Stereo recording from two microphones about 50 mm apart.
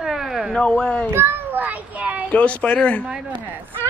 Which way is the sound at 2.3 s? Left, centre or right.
Left.